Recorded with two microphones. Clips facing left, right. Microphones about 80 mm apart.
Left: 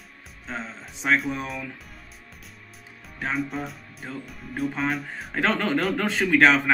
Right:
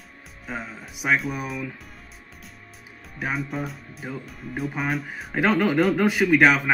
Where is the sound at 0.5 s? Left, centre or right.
Centre.